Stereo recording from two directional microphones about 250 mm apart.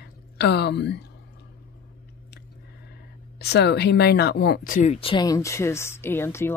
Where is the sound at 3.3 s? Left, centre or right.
Left.